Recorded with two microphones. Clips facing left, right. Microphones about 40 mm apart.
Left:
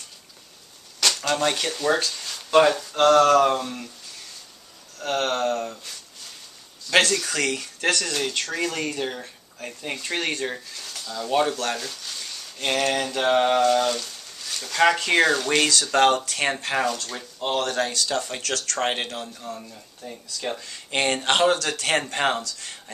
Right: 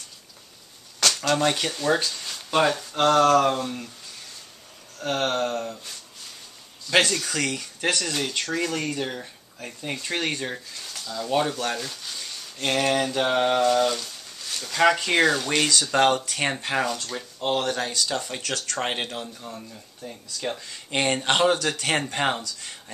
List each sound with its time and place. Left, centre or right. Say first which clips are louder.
1.1 s speech: right 2 dB; centre
2.5 s speech: left 4 dB; centre
5.0 s speech: left 1 dB; centre
6.9 s speech: left 1 dB; centre
19.7 s speech: left 1 dB; centre